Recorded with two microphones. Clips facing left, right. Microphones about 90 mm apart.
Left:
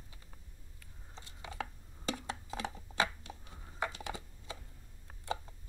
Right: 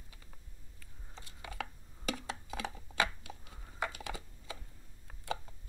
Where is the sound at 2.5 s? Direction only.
25° left (ahead or behind).